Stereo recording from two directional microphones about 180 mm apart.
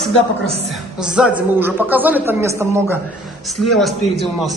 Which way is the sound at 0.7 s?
5° right (ahead or behind).